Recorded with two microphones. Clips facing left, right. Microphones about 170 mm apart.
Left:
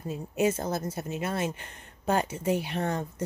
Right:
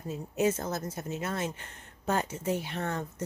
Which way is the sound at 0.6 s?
30° left (ahead or behind).